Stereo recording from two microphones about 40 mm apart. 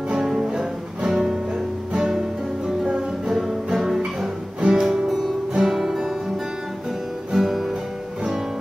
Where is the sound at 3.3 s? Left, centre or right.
Centre.